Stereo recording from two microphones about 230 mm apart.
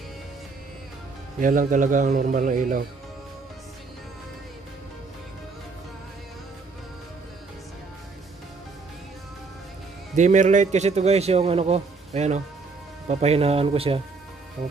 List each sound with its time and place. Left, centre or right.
1.4 s a man's voice: right
10.1 s a man's voice: right